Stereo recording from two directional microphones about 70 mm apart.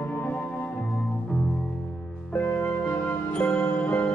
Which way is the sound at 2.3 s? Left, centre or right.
Left.